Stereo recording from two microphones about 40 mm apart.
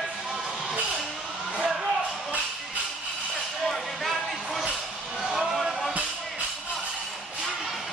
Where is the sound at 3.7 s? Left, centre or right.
Centre.